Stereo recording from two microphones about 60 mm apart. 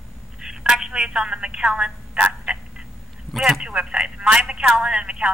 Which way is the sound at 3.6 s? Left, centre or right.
Centre.